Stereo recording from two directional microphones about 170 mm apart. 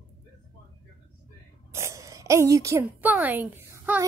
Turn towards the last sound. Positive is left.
turn(degrees=-15)  # may be behind; listen again after turning